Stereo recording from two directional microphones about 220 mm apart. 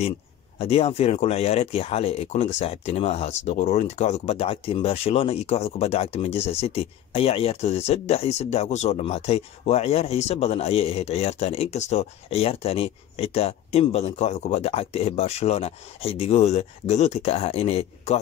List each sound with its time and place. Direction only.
0.6 s speech: 25° left (ahead or behind)